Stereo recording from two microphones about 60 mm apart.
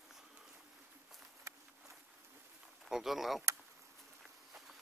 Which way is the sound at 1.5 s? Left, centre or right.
Right.